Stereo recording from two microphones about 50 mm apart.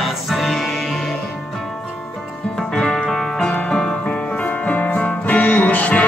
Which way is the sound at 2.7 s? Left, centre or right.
Centre.